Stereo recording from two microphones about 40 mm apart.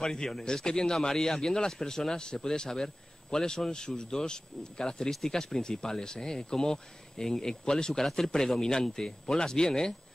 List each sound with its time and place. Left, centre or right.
0.0 s a man's voice: centre